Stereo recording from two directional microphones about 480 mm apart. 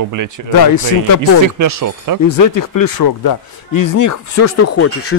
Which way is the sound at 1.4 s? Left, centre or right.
Right.